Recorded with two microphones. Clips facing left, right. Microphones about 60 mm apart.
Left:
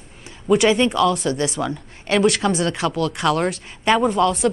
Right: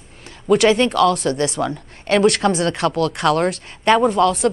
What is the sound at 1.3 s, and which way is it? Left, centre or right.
A woman's voice, centre.